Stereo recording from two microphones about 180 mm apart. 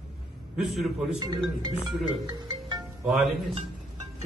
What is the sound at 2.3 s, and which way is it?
Music, 25° right (ahead or behind).